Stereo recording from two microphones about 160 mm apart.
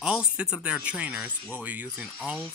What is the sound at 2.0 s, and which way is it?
Speech, 5° left (ahead or behind).